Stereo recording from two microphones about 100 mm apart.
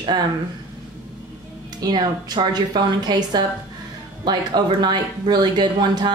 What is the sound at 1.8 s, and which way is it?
Speech, 45° right (ahead or behind).